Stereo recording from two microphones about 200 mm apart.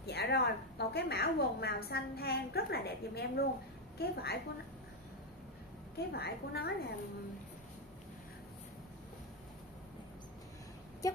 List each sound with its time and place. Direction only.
0.0 s a woman's voice: 55° left (ahead or behind)
5.9 s a woman's voice: 55° left (ahead or behind)